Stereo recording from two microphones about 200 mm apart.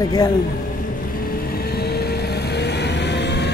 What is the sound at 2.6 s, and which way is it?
Vehicle, 60° left (ahead or behind).